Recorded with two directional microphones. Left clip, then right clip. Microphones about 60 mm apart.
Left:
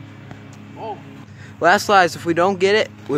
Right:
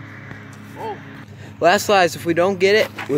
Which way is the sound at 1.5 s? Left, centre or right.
Centre.